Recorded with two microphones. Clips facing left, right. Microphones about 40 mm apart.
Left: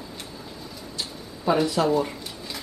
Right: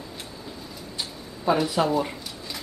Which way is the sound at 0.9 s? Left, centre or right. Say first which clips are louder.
Even; centre.